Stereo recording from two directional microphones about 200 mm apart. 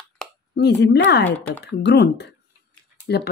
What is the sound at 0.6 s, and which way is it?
Speech, 60° left (ahead or behind).